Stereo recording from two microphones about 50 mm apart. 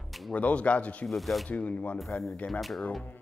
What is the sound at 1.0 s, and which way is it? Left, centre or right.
Sanding, centre.